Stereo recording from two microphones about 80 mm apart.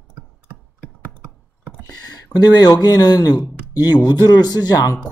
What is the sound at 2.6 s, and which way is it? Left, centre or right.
Speech, left.